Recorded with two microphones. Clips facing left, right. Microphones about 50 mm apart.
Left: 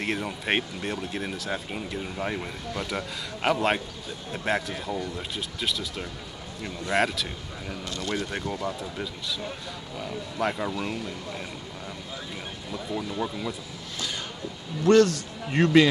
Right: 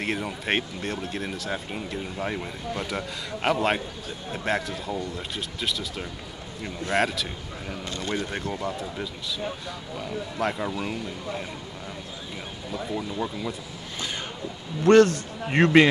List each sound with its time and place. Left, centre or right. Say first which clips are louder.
0.0 s speech: right 1 dB; centre
7.8 s a man's voice: right 1 dB; right
8.3 s speech: right 1 dB; centre
13.1 s speech: even; centre
13.9 s a sound: right 1 dB; right
14.8 s a man's voice: right 2 dB; right